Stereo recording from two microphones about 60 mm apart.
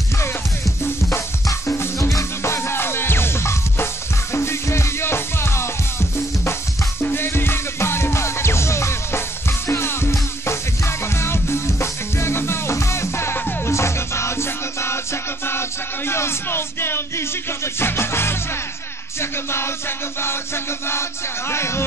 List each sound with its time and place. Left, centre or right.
1.1 s music: left
16.1 s music: left